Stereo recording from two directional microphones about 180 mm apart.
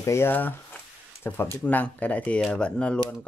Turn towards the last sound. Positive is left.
turn(degrees=5)  # may be behind; listen again after turning